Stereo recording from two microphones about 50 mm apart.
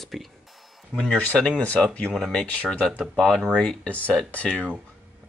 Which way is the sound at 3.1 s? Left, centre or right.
Centre.